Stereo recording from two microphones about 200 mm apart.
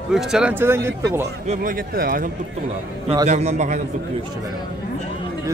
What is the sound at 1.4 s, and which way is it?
Speech, 45° right (ahead or behind).